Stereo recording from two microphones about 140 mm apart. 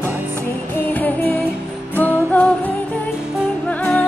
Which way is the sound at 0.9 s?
10° left (ahead or behind).